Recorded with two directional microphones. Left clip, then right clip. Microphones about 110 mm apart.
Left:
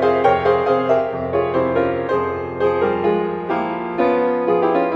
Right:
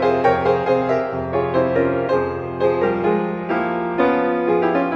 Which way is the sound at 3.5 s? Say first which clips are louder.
Right 3 dB; 40° right (ahead or behind).